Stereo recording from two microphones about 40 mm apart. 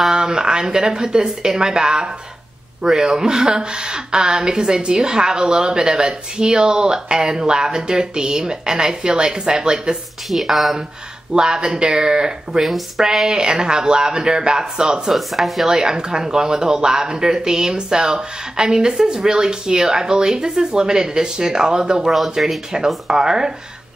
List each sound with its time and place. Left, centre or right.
0.1 s speech: centre
10.3 s speech: centre
11.3 s speech: centre
12.6 s speech: centre
15.1 s speech: centre
15.7 s speech: centre